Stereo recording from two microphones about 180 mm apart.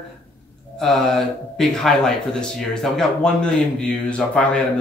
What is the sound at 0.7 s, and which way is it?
Speech, centre (ahead or behind).